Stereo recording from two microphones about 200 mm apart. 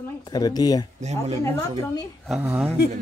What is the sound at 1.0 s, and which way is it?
Speech, 35° right (ahead or behind).